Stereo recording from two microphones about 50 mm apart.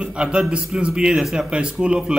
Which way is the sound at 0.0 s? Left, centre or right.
Right.